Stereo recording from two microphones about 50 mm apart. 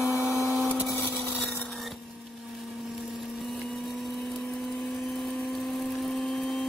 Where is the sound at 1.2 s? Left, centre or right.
Left.